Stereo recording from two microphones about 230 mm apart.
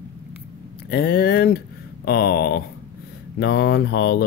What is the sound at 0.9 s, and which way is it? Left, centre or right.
Speech, left.